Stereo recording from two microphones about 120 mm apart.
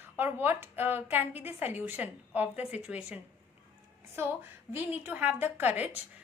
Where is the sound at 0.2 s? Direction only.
15° right (ahead or behind).